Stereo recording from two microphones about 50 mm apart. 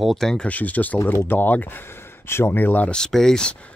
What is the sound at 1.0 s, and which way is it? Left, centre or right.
Speech, left.